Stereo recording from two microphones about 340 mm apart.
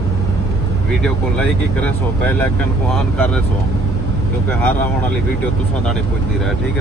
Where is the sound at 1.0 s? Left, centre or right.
Centre.